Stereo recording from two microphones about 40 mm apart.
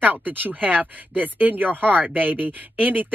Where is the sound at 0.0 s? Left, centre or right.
Right.